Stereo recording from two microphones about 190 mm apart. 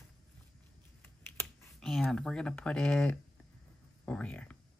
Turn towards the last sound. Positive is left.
turn(degrees=5)  # may be behind; listen again after turning